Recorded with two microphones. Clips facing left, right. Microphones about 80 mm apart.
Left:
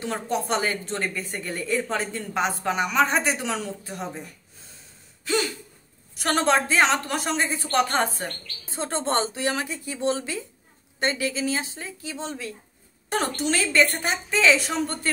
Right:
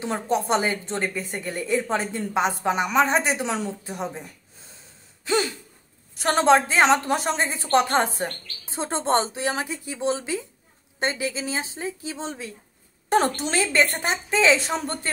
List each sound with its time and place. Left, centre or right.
0.0 s a woman's voice: right
5.2 s gasp: right
6.1 s a woman's voice: right